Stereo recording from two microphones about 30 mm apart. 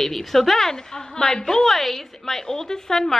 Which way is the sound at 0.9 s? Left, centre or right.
Left.